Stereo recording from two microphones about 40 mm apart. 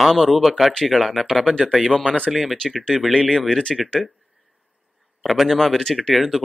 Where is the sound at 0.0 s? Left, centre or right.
Centre.